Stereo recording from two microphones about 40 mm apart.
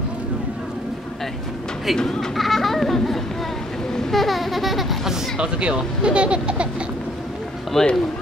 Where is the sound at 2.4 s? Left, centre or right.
Centre.